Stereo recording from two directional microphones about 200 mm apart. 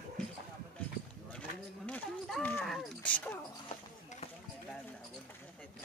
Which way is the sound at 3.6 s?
30° left (ahead or behind).